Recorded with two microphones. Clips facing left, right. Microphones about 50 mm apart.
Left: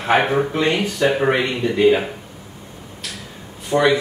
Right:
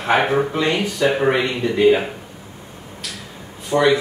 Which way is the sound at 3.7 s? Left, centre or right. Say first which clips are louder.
Even; centre.